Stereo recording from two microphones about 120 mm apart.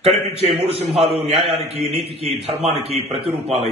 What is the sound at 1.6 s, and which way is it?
A man's voice, 55° right (ahead or behind).